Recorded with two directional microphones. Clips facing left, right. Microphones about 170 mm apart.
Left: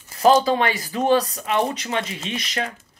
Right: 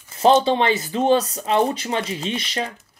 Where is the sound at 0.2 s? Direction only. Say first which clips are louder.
Right 1 dB; 25° right (ahead or behind).